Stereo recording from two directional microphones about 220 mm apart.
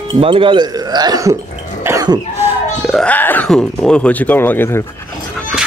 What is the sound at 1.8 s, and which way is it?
Cough, 15° right (ahead or behind).